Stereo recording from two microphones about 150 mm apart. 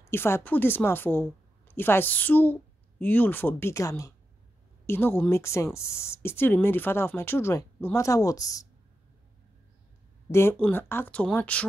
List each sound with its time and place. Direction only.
0.0 s speech: 15° left (ahead or behind)
10.3 s speech: 15° left (ahead or behind)